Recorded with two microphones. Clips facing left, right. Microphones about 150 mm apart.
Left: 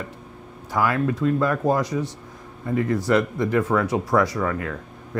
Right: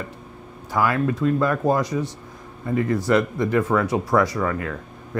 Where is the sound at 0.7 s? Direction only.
20° right (ahead or behind).